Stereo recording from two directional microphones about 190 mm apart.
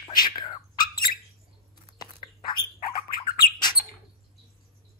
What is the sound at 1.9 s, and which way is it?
Dog, 25° left (ahead or behind).